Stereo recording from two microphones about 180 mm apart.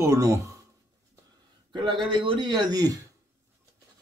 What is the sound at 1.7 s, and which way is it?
A man's voice, 25° right (ahead or behind).